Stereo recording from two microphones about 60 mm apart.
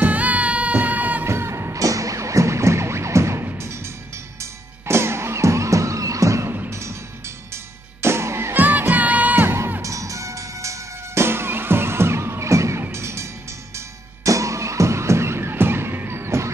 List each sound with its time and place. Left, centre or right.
0.0 s music: right
1.2 s music: right
8.5 s music: right
9.8 s music: right
13.7 s music: right